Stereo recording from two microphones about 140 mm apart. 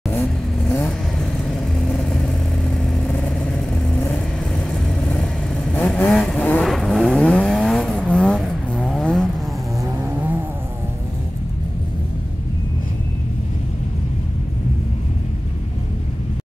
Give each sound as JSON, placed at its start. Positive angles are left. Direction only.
{"t": 0.2, "sound": "vehicle", "side_deg": 5}